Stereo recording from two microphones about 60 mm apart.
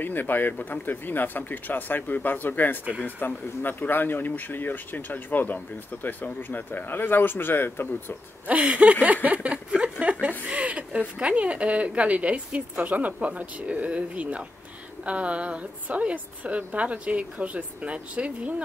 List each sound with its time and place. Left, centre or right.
0.0 s speech: left
8.5 s speech: right
9.8 s a sound: centre
10.4 s speech: right